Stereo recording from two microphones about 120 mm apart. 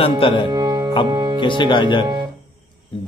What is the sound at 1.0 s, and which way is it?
Speech, 35° right (ahead or behind).